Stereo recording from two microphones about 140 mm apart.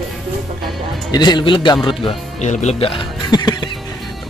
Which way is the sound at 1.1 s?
30° left (ahead or behind).